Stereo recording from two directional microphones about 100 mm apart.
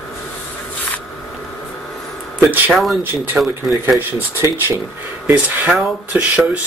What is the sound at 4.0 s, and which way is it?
Speech, 20° right (ahead or behind).